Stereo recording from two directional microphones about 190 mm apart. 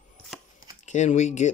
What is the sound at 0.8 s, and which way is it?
Speech, 40° left (ahead or behind).